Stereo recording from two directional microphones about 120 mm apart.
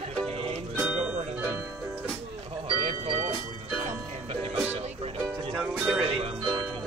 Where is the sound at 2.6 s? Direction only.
50° right (ahead or behind).